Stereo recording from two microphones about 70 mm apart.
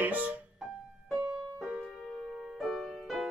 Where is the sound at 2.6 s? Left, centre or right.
Centre.